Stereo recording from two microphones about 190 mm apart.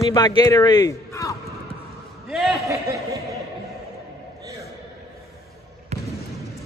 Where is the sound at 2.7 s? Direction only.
15° right (ahead or behind).